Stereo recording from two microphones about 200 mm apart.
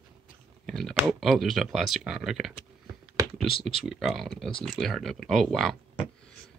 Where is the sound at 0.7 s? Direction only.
Centre (ahead or behind).